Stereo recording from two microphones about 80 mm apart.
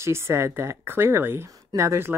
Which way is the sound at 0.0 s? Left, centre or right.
Right.